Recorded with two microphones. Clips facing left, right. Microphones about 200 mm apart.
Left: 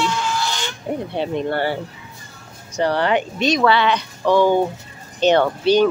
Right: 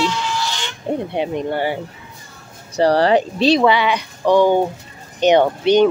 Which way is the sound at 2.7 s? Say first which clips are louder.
Right 5 dB; 35° right (ahead or behind).